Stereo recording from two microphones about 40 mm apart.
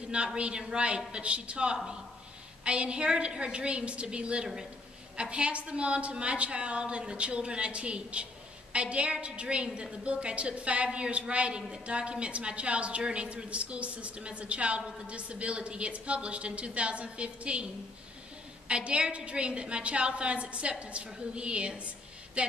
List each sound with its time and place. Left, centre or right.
0.4 s a woman's voice: right
18.7 s a woman's voice: right